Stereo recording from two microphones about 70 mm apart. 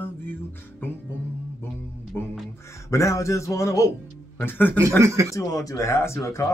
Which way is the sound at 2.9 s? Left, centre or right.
Left.